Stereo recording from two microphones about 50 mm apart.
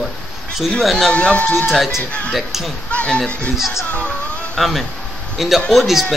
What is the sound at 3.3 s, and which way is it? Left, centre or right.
Speech, left.